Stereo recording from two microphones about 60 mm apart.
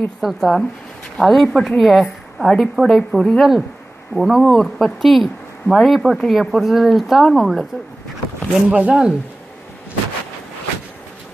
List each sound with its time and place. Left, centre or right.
0.2 s speech: centre
8.6 s speech: centre